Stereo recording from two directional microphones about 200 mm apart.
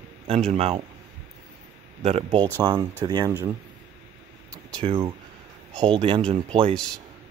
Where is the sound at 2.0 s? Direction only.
30° right (ahead or behind).